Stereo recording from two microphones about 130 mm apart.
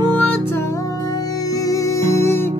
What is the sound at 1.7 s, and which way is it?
Music, 20° left (ahead or behind).